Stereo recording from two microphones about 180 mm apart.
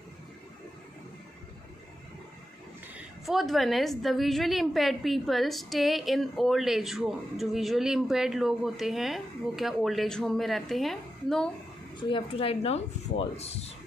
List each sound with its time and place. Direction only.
3.3 s a woman's voice: centre (ahead or behind)
12.0 s a woman's voice: 30° left (ahead or behind)